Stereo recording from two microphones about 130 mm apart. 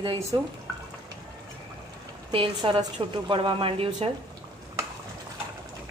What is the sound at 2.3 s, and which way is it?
A woman's voice, 40° right (ahead or behind).